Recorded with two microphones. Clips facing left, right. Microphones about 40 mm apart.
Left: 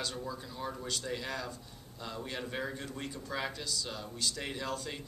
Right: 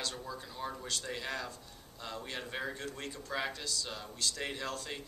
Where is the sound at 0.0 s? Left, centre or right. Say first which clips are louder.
Left 2 dB; centre.